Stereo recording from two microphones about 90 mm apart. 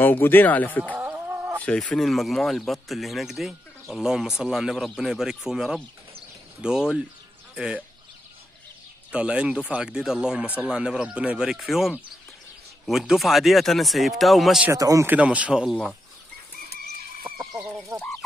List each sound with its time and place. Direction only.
0.0 s speech: 20° left (ahead or behind)
0.9 s chicken: 25° right (ahead or behind)
2.0 s speech: centre (ahead or behind)
9.1 s speech: 10° right (ahead or behind)
14.7 s speech: 40° right (ahead or behind)
15.0 s speech: 15° right (ahead or behind)
15.7 s speech: 5° left (ahead or behind)
17.3 s chicken: 30° right (ahead or behind)
17.9 s speech: 40° right (ahead or behind)